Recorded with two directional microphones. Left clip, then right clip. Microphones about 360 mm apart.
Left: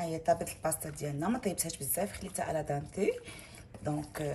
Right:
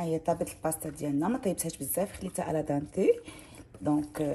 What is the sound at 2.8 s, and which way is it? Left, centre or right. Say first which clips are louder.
Speech: right 7 dB; centre.